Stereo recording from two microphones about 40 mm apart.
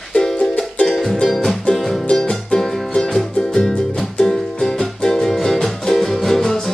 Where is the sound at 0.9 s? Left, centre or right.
Centre.